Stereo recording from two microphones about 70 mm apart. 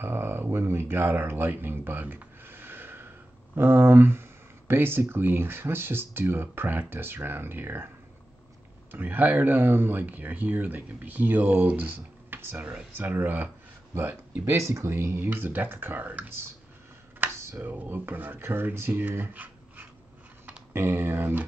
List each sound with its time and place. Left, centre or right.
0.0 s a sound: right
3.5 s speech: right
8.9 s speech: right
14.4 s speech: right
17.4 s a sound: right
17.6 s speech: right